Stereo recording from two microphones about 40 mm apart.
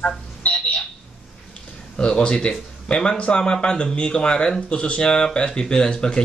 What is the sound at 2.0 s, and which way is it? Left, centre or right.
Speech, left.